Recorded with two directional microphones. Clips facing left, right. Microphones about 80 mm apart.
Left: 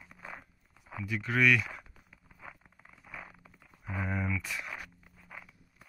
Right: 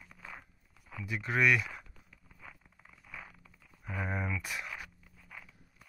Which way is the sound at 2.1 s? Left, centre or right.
Centre.